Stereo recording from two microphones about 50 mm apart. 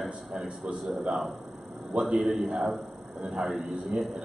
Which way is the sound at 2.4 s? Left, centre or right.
Centre.